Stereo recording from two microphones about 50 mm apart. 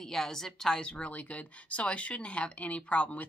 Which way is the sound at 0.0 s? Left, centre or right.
Centre.